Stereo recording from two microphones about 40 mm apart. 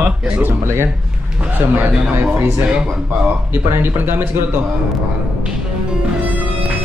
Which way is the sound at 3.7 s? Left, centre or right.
Right.